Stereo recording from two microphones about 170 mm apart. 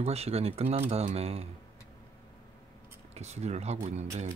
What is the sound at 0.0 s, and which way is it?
Speech, 35° right (ahead or behind).